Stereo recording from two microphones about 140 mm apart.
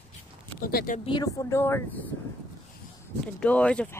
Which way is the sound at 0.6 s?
85° left.